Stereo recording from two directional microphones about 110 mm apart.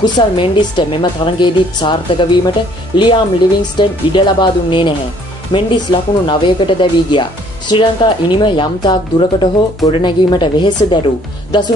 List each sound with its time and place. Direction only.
0.0 s speech: 45° left (ahead or behind)